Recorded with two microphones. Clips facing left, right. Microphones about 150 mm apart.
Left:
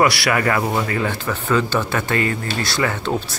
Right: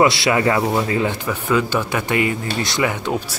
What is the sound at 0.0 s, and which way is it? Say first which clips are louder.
Speech: right 2 dB; 20° right (ahead or behind).